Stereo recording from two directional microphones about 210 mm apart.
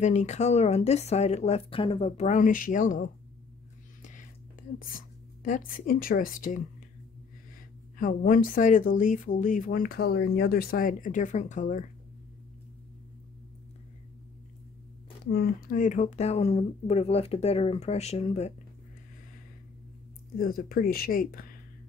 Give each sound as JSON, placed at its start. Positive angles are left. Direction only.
{"t": 0.0, "sound": "speech", "side_deg": 35}
{"t": 4.0, "sound": "whispering", "side_deg": 40}
{"t": 8.0, "sound": "speech", "side_deg": 40}
{"t": 15.3, "sound": "speech", "side_deg": 40}
{"t": 20.3, "sound": "speech", "side_deg": 45}